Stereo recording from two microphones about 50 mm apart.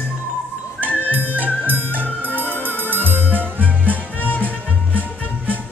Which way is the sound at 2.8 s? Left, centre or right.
Left.